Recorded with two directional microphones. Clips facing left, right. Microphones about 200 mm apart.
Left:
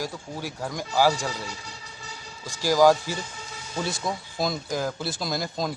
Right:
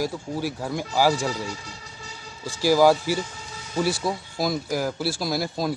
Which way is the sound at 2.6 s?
10° right (ahead or behind).